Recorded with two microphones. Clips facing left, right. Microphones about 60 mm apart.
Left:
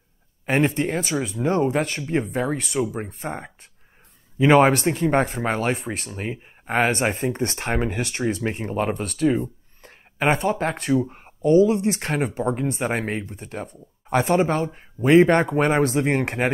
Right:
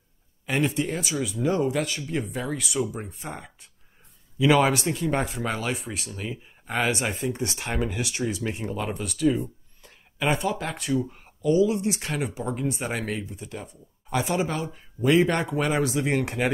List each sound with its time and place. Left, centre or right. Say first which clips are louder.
0.5 s speech: left 4 dB; left